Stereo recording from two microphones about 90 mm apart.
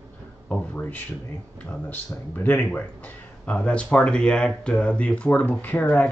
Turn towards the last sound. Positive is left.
turn(degrees=15)  # may be behind; listen again after turning